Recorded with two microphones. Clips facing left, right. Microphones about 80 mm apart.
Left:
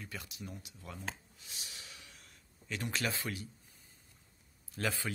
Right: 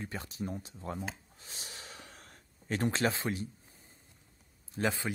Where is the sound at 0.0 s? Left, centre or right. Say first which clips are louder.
Right 7 dB; right.